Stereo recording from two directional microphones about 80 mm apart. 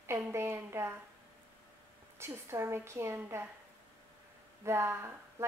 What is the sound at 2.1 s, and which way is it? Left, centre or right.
Speech, right.